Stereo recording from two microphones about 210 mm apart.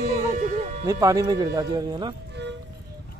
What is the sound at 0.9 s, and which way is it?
Speech, 15° right (ahead or behind).